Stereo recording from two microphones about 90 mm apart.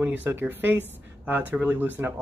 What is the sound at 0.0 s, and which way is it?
Speech, 20° right (ahead or behind).